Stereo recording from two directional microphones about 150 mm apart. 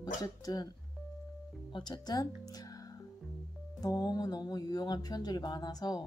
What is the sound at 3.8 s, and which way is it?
Speech, 25° left (ahead or behind).